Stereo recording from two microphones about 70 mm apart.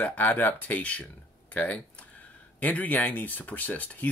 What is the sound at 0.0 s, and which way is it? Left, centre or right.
Speech, left.